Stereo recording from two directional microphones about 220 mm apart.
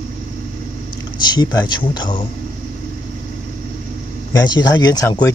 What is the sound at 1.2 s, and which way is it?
Speech, 20° left (ahead or behind).